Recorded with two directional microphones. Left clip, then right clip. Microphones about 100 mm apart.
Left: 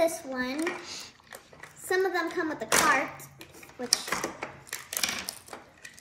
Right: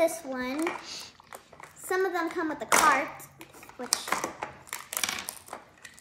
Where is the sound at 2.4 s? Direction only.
60° right (ahead or behind).